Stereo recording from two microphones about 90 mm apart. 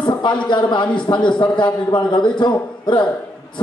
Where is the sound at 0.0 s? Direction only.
60° left (ahead or behind).